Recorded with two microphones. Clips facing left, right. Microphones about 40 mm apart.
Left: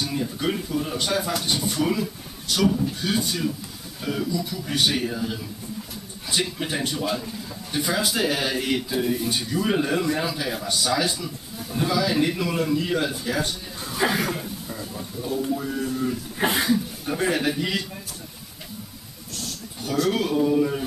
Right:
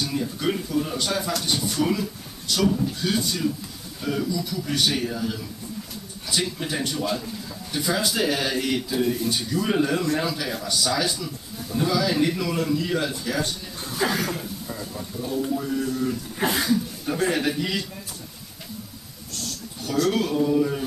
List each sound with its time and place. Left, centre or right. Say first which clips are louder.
0.0 s speech: even; centre
17.1 s speech: even; centre
19.9 s speech: even; centre